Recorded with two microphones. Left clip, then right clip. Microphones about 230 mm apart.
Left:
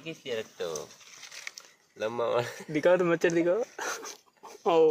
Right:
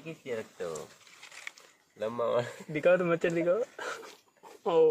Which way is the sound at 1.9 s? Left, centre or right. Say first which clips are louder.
Left 1 dB; left.